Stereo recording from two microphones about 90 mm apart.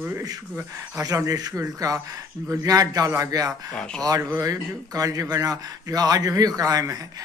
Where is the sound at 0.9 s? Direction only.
40° right (ahead or behind).